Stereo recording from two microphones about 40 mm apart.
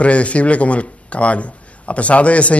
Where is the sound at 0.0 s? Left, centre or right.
Left.